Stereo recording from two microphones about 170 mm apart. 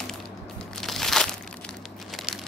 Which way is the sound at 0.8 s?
Centre (ahead or behind).